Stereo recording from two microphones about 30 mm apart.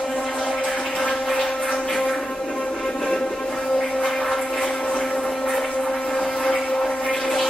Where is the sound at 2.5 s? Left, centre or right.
Left.